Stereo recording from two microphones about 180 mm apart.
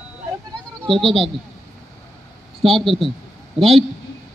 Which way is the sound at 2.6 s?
Centre (ahead or behind).